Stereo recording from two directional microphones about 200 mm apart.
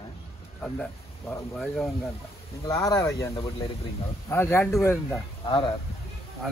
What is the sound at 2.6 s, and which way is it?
Speech, 15° left (ahead or behind).